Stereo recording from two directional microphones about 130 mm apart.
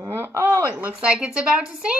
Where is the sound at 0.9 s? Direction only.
10° right (ahead or behind).